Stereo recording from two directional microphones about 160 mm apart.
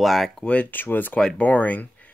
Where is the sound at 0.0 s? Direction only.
Centre (ahead or behind).